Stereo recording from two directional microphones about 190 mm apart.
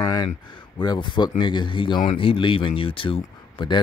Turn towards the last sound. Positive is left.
turn(degrees=25)  # may be behind; listen again after turning